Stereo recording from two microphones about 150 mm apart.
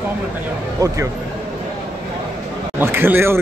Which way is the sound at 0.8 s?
20° right (ahead or behind).